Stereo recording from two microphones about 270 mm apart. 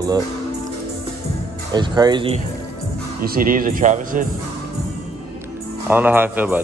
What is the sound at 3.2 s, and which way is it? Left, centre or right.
Speech, right.